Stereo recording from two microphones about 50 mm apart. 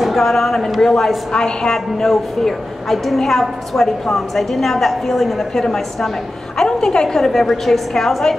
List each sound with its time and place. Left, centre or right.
0.0 s a woman's voice: centre